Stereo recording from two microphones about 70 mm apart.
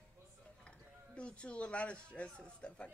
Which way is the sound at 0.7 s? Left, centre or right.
Centre.